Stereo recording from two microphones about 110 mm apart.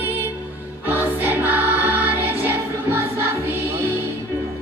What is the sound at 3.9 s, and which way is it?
Music, 25° left (ahead or behind).